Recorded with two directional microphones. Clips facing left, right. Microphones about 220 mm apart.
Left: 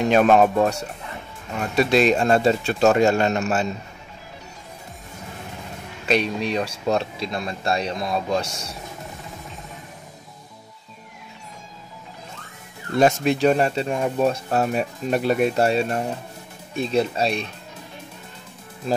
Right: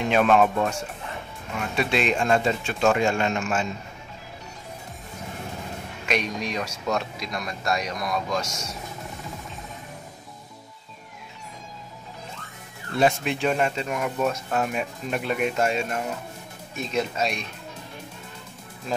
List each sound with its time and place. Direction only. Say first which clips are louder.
0.0 s speech: left 4 dB; 40° left (ahead or behind)
6.0 s speech: left 5 dB; 30° left (ahead or behind)
13.0 s speech: left 5 dB; 40° left (ahead or behind)